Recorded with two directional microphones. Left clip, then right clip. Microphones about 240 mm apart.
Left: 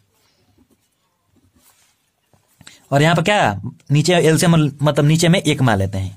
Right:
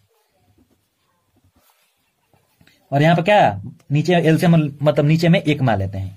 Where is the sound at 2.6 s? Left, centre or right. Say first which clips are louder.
Left 2 dB; left.